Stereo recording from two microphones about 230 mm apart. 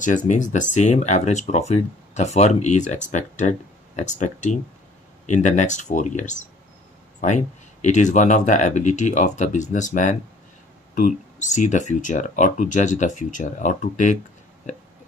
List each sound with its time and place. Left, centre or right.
0.0 s speech: left